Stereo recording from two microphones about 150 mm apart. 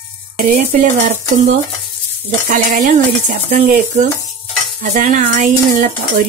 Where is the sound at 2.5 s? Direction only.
55° right (ahead or behind).